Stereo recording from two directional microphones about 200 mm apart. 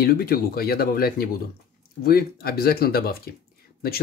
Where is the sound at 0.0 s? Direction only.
50° left (ahead or behind).